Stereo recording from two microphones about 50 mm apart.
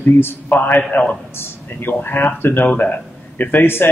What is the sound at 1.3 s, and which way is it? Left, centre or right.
A man's voice, left.